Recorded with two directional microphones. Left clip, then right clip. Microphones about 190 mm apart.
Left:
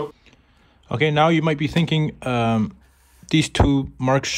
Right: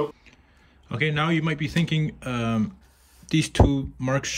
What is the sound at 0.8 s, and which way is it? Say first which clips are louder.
Speech: left 7 dB; 20° left (ahead or behind).